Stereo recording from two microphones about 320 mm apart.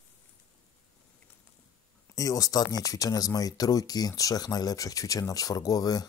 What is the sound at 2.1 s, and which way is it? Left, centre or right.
Speech, centre.